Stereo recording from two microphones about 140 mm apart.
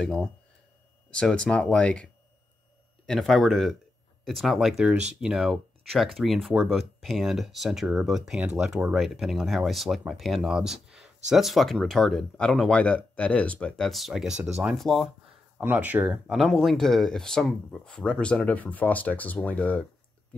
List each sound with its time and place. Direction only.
0.0 s speech: 5° left (ahead or behind)
3.1 s speech: centre (ahead or behind)
15.5 s speech: 10° right (ahead or behind); by 19.9 s 10° left (ahead or behind)